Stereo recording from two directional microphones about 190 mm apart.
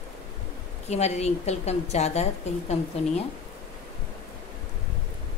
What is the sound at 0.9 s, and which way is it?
A woman's voice, 35° left (ahead or behind).